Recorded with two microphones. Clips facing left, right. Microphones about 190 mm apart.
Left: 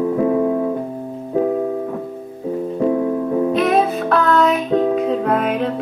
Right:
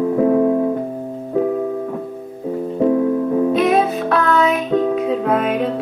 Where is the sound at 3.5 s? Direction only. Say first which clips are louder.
Right 1 dB; centre (ahead or behind).